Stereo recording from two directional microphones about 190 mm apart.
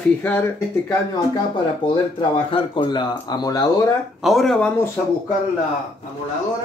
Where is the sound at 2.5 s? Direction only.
25° left (ahead or behind).